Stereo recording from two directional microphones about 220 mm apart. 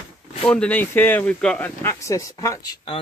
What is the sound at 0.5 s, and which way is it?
Speech, 5° left (ahead or behind).